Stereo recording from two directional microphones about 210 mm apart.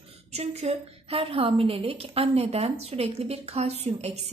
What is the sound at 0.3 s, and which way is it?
A woman's voice, 30° right (ahead or behind).